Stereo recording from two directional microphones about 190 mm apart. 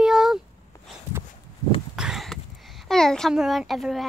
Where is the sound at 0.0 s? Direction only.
5° right (ahead or behind).